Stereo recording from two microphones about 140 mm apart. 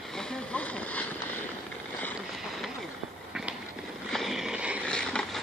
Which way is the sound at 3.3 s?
5° right (ahead or behind).